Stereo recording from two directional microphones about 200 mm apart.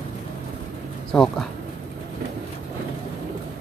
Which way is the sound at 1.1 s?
Centre (ahead or behind).